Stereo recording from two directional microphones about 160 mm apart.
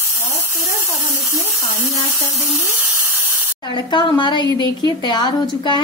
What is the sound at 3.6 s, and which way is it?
Speech, 30° left (ahead or behind).